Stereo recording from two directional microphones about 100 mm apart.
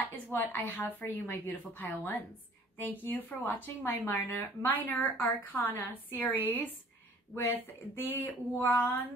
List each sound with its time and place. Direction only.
0.1 s a woman's voice: 20° left (ahead or behind)